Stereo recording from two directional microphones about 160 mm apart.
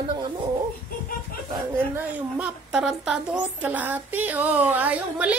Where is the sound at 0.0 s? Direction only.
30° right (ahead or behind).